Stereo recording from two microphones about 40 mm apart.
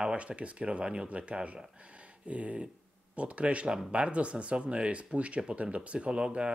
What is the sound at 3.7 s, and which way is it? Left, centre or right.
Speech, right.